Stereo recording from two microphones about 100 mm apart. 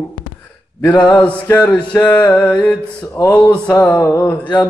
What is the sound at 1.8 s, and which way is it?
Music, 45° left (ahead or behind).